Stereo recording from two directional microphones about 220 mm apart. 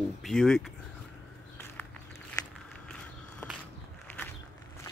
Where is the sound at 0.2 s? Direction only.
Centre (ahead or behind).